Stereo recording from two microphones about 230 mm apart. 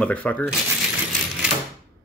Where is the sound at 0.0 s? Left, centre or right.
Centre.